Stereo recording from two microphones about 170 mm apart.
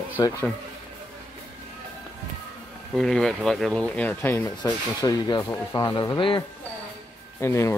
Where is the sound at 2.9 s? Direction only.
Centre (ahead or behind); by 6.4 s 30° left (ahead or behind).